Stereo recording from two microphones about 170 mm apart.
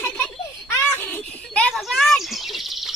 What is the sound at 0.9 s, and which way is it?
A child's voice, 10° left (ahead or behind).